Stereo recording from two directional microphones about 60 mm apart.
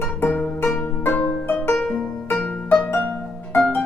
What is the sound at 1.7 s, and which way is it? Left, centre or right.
Music, centre.